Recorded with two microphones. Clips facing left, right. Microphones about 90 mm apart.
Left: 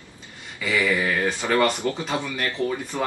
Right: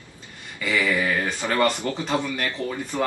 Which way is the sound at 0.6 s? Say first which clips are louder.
Left 1 dB; 15° left (ahead or behind).